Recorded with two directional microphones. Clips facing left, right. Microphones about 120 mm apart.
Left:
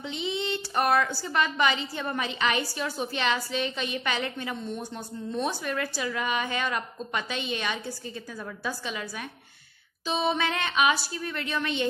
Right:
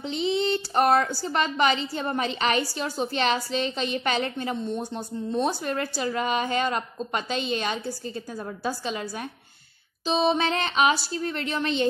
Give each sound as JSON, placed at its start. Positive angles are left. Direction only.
{"t": 0.0, "sound": "a woman's voice", "side_deg": -35}